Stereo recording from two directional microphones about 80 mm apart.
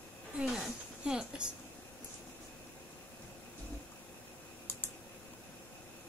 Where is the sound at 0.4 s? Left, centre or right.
Centre.